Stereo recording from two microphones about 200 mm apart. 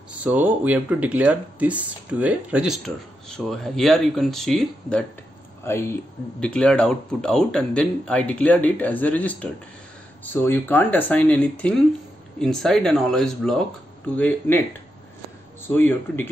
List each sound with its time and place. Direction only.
0.2 s speech: 5° right (ahead or behind); by 14.6 s 10° left (ahead or behind)
15.7 s speech: 10° left (ahead or behind)